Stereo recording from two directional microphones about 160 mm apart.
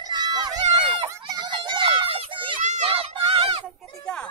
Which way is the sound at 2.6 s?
40° right (ahead or behind).